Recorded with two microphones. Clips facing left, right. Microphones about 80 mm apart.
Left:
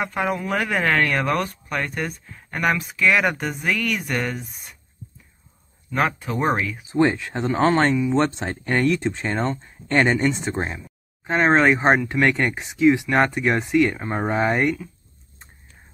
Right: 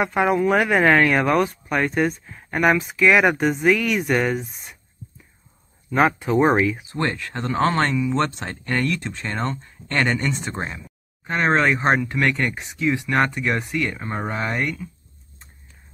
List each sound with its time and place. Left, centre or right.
0.0 s speech: centre
5.9 s speech: centre
6.9 s speech: centre